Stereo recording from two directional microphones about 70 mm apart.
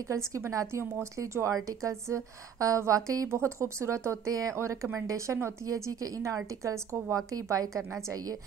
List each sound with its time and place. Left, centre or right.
0.1 s a woman's voice: right
7.3 s a woman's voice: right